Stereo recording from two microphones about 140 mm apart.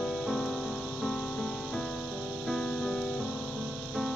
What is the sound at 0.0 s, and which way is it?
Music, centre (ahead or behind).